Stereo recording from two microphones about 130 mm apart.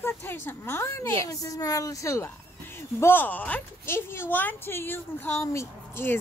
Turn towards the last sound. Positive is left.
turn(degrees=20)  # may be behind; listen again after turning